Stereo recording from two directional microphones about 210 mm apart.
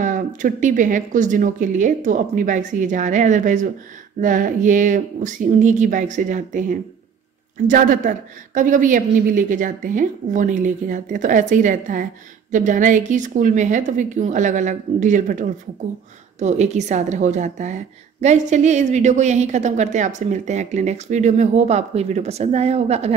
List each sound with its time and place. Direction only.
0.0 s a woman's voice: 40° right (ahead or behind)